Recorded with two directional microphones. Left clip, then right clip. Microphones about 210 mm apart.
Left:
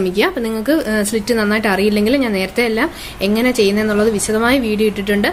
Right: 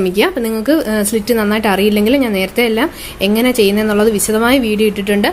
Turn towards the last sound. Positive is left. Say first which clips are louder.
# right 2 dB
turn(degrees=-15)  # may be behind; listen again after turning